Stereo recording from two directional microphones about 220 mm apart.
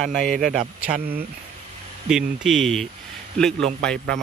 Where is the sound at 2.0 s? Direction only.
Centre (ahead or behind).